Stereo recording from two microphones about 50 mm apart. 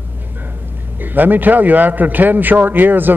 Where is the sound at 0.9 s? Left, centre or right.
Right.